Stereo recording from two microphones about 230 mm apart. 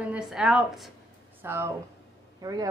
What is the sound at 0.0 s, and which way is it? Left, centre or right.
A woman's voice, centre.